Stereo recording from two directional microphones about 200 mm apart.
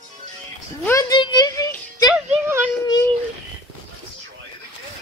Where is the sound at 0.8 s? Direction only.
15° left (ahead or behind).